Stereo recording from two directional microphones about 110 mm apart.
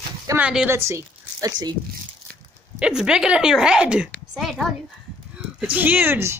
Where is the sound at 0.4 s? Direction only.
5° right (ahead or behind).